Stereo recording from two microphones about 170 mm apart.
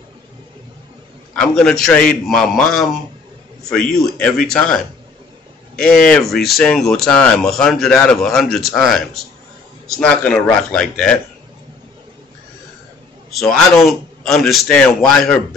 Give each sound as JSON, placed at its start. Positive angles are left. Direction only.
{"t": 1.3, "sound": "speech", "side_deg": 5}
{"t": 13.3, "sound": "speech", "side_deg": 0}